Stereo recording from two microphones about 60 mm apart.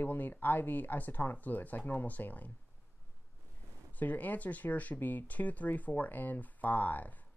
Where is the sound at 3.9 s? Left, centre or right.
Left.